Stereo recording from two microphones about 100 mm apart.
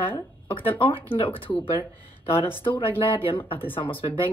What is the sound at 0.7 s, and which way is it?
Speech, 65° left (ahead or behind).